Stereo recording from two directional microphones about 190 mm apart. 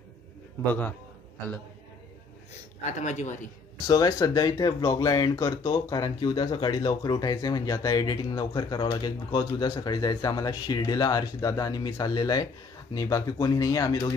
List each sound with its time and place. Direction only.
2.8 s speech: 40° left (ahead or behind)
3.8 s speech: 20° left (ahead or behind)